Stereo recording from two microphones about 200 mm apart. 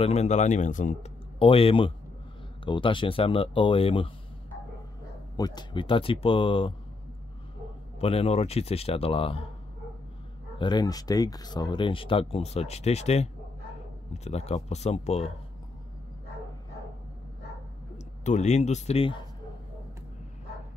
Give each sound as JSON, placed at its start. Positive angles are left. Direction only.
{"t": 0.0, "sound": "speech", "side_deg": 35}
{"t": 1.4, "sound": "speech", "side_deg": 25}
{"t": 5.4, "sound": "speech", "side_deg": 20}
{"t": 8.0, "sound": "speech", "side_deg": 30}
{"t": 10.6, "sound": "speech", "side_deg": 20}
{"t": 17.9, "sound": "speech", "side_deg": 35}